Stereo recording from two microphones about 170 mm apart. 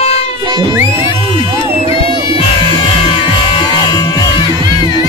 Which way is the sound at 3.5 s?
25° left (ahead or behind).